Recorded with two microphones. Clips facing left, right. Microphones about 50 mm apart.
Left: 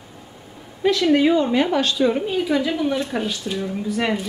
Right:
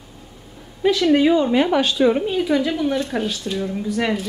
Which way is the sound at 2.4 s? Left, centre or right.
Centre.